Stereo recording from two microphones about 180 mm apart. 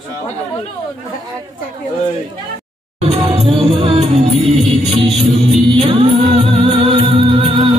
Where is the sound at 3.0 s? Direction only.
35° right (ahead or behind).